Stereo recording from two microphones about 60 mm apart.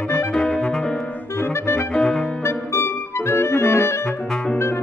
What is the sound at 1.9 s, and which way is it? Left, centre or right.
Music, centre.